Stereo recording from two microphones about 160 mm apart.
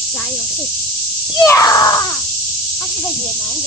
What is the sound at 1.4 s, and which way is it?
Speech, 20° left (ahead or behind).